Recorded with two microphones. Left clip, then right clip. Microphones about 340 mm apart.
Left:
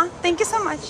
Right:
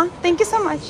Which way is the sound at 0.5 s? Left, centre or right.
Centre.